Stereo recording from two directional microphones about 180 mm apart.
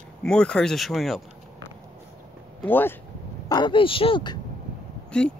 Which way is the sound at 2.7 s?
10° left (ahead or behind).